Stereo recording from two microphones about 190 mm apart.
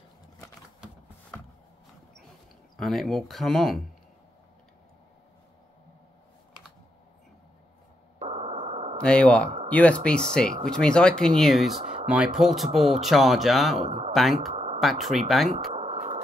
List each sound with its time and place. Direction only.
2.8 s speech: centre (ahead or behind)
8.2 s radio: 35° right (ahead or behind)
9.0 s speech: 5° left (ahead or behind)
13.7 s speech: 35° right (ahead or behind)
14.1 s speech: centre (ahead or behind)
14.5 s a sound: 35° right (ahead or behind)
14.8 s speech: centre (ahead or behind)
15.7 s a sound: 35° right (ahead or behind)